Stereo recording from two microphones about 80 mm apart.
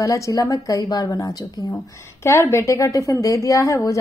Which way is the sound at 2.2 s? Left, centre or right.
Left.